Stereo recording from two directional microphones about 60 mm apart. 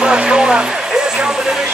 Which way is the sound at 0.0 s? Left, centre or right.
Centre.